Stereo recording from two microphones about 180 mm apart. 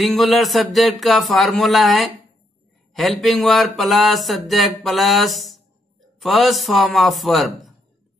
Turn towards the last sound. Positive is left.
turn(degrees=0)  # may be behind; listen again after turning